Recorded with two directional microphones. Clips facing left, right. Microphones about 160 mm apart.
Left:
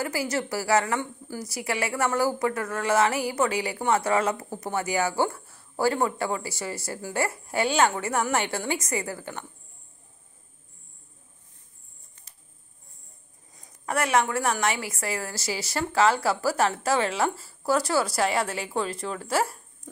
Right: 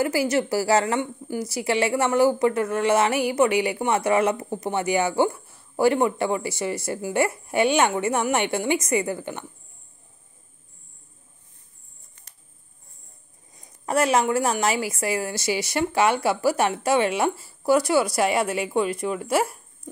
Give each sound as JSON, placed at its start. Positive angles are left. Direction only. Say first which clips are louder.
{"t": 0.0, "sound": "a woman's voice", "louder": "right 6 dB", "side_deg": -25}
{"t": 13.8, "sound": "a woman's voice", "louder": "right 4 dB", "side_deg": -25}